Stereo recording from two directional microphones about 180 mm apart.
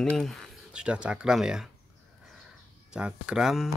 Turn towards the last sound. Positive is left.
turn(degrees=0)  # may be behind; listen again after turning